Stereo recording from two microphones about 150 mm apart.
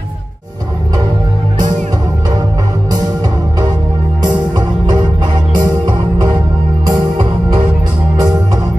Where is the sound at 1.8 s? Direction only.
25° right (ahead or behind).